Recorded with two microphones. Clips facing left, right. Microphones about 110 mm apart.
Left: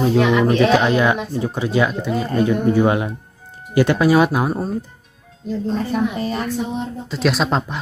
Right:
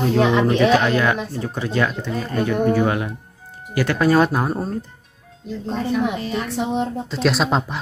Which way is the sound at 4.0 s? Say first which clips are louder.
Right 2 dB; 5° left (ahead or behind).